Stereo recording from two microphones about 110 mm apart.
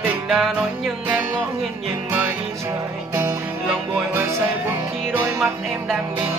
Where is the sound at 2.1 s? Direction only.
20° right (ahead or behind).